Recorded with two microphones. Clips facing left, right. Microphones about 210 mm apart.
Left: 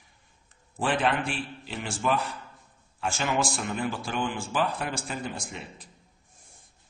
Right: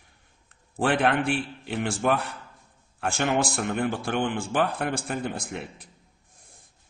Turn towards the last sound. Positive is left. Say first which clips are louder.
# right 5 dB
turn(degrees=-60)  # may be behind; listen again after turning